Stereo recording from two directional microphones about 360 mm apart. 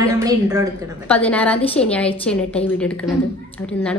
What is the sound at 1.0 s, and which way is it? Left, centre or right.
A woman's voice, centre.